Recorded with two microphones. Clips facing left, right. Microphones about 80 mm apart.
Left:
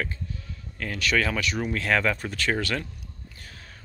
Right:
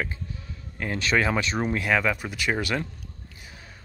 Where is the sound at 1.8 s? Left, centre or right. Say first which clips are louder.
Left 2 dB; centre.